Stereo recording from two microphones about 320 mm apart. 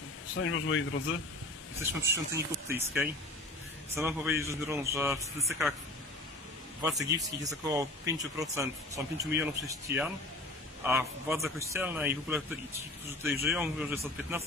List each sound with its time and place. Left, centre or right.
0.4 s speech: left
1.8 s speech: centre
6.8 s a man's voice: centre